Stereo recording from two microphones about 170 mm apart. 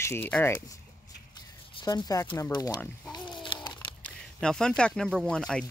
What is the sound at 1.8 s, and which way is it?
Speech, 20° left (ahead or behind).